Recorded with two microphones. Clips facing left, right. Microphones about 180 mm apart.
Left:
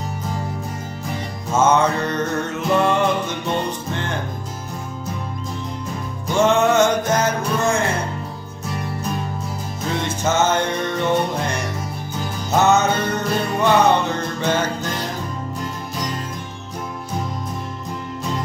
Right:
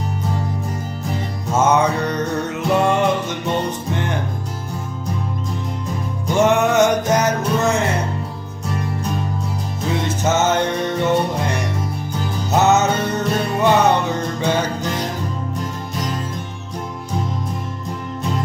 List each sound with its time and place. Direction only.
1.5 s music: 20° right (ahead or behind)
6.3 s music: 20° right (ahead or behind)
10.0 s music: 20° right (ahead or behind)